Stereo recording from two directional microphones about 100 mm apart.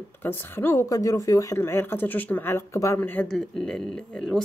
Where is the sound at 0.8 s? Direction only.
35° left (ahead or behind).